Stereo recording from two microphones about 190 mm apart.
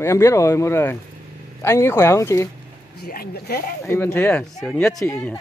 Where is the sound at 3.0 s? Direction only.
55° left (ahead or behind).